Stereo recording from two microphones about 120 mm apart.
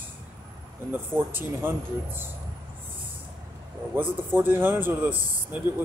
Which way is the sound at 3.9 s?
15° right (ahead or behind).